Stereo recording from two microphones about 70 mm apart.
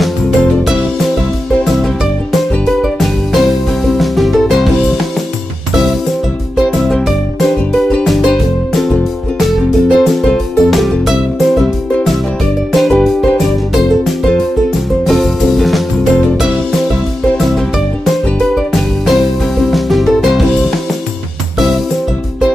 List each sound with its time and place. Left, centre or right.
2.3 s music: centre
6.5 s music: centre
12.7 s music: centre